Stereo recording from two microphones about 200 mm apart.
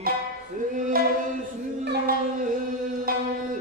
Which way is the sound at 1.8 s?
55° right (ahead or behind).